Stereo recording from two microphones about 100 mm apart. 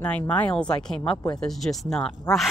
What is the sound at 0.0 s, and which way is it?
Speech, 15° left (ahead or behind).